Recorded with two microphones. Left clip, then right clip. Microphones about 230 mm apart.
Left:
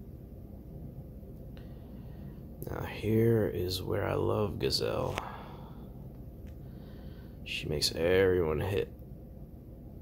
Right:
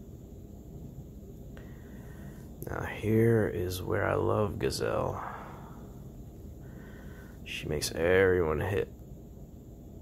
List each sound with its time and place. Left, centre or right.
2.6 s speech: centre
7.5 s speech: centre